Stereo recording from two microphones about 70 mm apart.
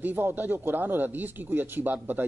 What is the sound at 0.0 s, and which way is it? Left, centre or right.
Speech, right.